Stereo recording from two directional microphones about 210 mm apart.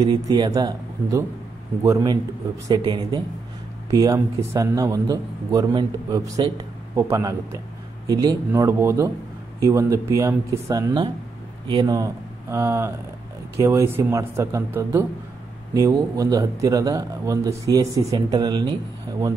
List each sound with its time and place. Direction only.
0.0 s a man's voice: 20° right (ahead or behind)